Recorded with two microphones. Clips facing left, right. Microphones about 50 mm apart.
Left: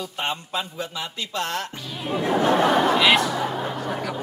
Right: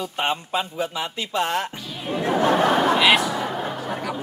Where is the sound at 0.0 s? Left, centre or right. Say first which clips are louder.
Right 3 dB; centre.